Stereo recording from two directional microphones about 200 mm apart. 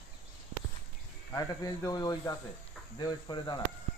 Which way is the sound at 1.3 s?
20° left (ahead or behind).